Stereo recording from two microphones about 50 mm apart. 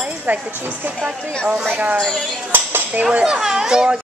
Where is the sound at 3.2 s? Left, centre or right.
Centre.